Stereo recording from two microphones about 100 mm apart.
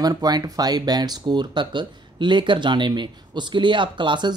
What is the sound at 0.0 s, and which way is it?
Speech, 40° right (ahead or behind).